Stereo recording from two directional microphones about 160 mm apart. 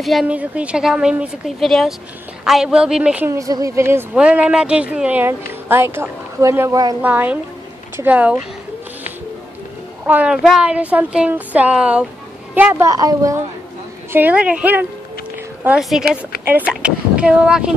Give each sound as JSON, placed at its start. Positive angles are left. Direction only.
{"t": 0.0, "sound": "a woman's voice", "side_deg": 0}
{"t": 3.3, "sound": "speech", "side_deg": -20}
{"t": 7.0, "sound": "speech", "side_deg": -10}
{"t": 10.0, "sound": "a woman's voice", "side_deg": -10}
{"t": 14.1, "sound": "a woman's voice", "side_deg": -10}